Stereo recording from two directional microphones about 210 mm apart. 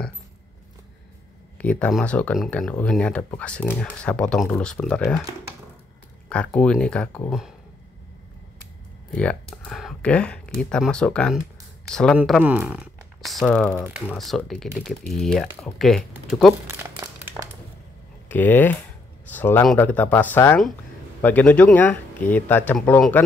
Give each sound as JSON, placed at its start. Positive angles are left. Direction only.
{"t": 1.6, "sound": "speech", "side_deg": 5}
{"t": 6.2, "sound": "speech", "side_deg": 5}
{"t": 9.1, "sound": "speech", "side_deg": 5}
{"t": 16.6, "sound": "crumpling", "side_deg": -10}
{"t": 18.3, "sound": "speech", "side_deg": 10}